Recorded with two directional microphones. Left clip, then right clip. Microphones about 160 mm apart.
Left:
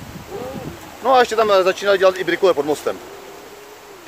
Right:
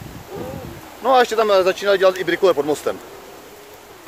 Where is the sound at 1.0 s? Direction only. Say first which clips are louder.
Left 1 dB; 10° right (ahead or behind).